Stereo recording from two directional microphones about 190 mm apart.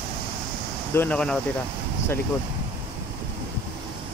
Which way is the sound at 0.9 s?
5° left (ahead or behind).